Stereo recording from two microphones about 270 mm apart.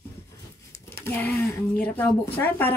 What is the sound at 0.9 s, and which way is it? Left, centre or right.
Speech, centre.